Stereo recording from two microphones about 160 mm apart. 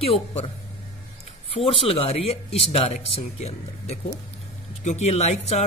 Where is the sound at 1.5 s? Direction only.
35° left (ahead or behind).